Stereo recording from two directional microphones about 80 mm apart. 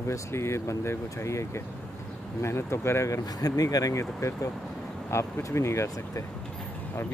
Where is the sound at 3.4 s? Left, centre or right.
Left.